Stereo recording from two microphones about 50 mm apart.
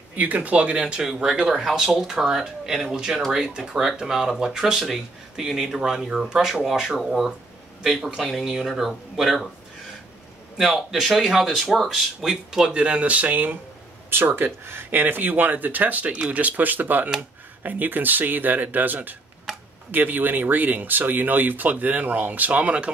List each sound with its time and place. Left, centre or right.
0.1 s speech: right; by 9.5 s centre
10.6 s speech: centre
12.7 s speech: right
14.1 s speech: right